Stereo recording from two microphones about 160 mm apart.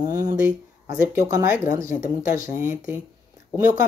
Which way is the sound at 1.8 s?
60° left (ahead or behind).